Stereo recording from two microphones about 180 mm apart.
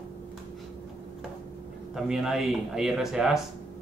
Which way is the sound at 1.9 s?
Centre (ahead or behind).